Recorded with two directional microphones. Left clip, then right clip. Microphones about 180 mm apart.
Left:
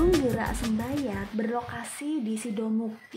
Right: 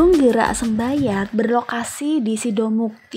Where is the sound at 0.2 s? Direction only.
40° right (ahead or behind).